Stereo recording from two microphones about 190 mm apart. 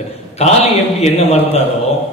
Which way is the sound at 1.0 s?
35° left (ahead or behind).